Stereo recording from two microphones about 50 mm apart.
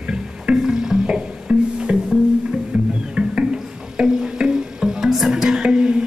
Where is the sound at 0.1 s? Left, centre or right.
Centre.